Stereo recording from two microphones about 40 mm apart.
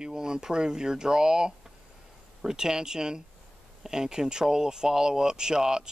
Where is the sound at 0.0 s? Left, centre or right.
Centre.